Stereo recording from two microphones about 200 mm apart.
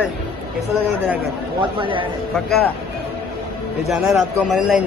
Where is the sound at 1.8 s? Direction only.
25° right (ahead or behind).